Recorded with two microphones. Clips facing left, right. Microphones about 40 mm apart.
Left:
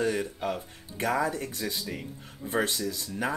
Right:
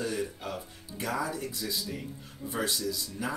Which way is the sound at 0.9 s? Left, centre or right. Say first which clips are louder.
Left 5 dB; left.